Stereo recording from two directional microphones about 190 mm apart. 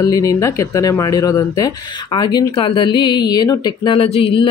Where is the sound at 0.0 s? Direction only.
20° left (ahead or behind).